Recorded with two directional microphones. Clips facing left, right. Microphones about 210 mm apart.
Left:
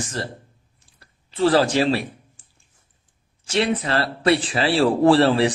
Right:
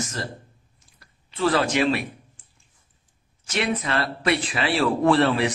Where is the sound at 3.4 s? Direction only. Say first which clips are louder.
Left 4 dB; 30° left (ahead or behind).